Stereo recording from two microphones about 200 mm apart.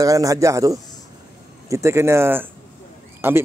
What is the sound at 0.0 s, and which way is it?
Speech, 15° right (ahead or behind).